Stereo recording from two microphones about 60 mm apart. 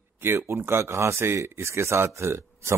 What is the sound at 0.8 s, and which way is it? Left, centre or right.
Speech, right.